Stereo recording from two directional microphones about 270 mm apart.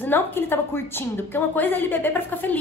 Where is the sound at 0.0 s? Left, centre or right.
Centre.